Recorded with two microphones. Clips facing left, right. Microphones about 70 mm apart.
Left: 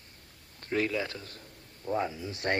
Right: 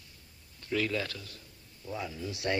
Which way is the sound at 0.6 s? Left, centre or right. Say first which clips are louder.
Left 2 dB; left.